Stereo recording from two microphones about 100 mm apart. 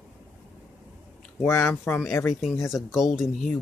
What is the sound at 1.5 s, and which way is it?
Speech, 25° left (ahead or behind).